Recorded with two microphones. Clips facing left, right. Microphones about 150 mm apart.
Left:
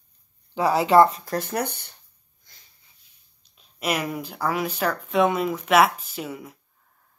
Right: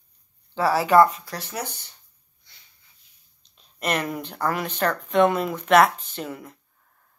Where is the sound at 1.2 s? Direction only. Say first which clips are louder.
Left 6 dB; 50° left (ahead or behind).